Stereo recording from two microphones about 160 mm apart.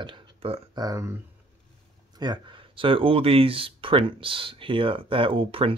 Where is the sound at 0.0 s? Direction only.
35° right (ahead or behind).